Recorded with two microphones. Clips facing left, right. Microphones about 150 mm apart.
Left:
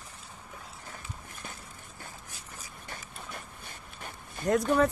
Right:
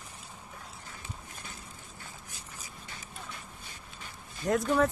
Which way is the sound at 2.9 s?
55° left (ahead or behind).